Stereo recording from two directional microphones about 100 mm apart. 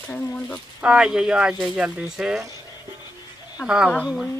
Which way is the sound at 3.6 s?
5° right (ahead or behind).